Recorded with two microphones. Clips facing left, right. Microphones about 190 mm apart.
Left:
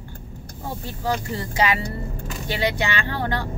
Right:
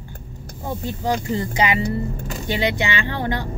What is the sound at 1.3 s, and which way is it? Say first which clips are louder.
Speech: right 2 dB; 20° right (ahead or behind).